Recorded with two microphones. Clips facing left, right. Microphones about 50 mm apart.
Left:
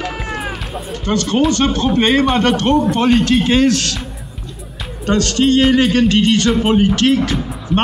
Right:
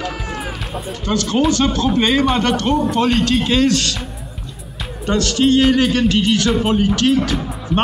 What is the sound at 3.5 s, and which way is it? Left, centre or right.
Speech, centre.